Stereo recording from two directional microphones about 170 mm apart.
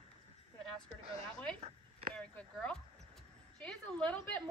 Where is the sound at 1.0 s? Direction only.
30° right (ahead or behind).